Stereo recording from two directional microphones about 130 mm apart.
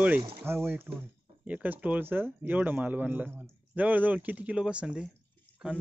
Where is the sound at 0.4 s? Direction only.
15° right (ahead or behind).